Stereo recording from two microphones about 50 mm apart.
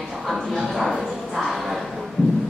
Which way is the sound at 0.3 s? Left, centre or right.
Centre.